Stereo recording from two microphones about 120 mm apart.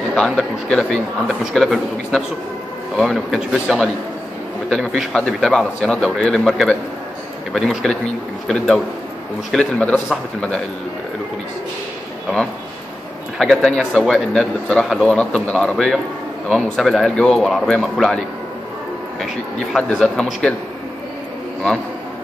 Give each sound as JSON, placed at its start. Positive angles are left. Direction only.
{"t": 0.1, "sound": "a man's voice", "side_deg": 5}
{"t": 13.4, "sound": "speech", "side_deg": 5}
{"t": 19.7, "sound": "a man's voice", "side_deg": 5}